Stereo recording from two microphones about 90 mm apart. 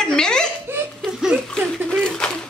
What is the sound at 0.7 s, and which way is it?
Laughter, 25° right (ahead or behind).